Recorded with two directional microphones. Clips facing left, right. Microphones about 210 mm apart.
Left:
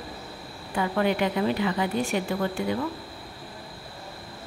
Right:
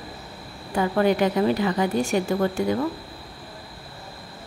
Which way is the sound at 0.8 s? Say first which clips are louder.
Right 4 dB; 40° right (ahead or behind).